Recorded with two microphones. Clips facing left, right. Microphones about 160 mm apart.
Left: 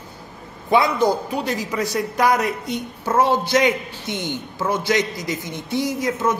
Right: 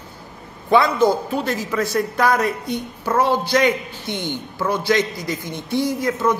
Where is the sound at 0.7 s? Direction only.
15° left (ahead or behind).